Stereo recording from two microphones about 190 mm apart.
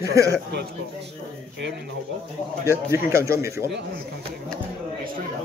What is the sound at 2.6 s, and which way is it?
A man's voice, 15° right (ahead or behind).